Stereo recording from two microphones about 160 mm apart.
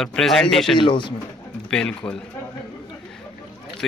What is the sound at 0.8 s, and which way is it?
Speech, 30° left (ahead or behind).